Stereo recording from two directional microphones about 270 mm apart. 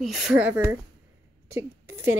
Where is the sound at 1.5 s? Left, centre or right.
Centre.